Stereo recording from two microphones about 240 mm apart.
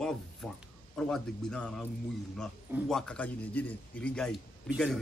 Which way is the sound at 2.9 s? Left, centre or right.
Centre.